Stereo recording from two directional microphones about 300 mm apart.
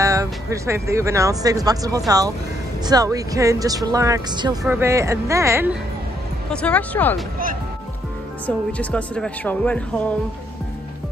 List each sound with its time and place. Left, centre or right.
0.0 s speech: centre
6.5 s speech: centre
8.5 s speech: centre